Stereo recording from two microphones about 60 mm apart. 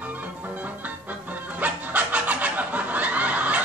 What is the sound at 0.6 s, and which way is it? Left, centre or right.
Music, right.